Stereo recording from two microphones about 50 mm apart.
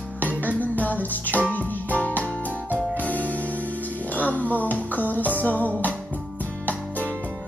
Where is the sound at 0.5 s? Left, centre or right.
Left.